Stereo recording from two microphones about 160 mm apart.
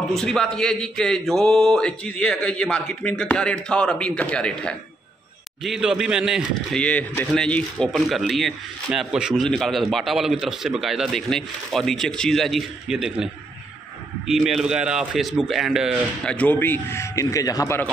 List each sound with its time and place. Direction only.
0.1 s speech: 5° left (ahead or behind)
6.8 s speech: 10° left (ahead or behind)
16.3 s a man's voice: 10° left (ahead or behind)